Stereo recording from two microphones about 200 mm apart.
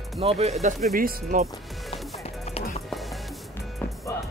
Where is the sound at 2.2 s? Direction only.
30° left (ahead or behind).